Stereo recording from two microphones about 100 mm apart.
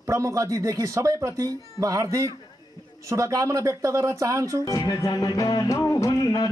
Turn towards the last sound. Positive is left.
turn(degrees=40)  # may be behind; listen again after turning